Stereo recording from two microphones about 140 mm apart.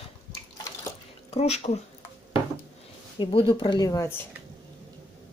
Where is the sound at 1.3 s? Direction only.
50° left (ahead or behind).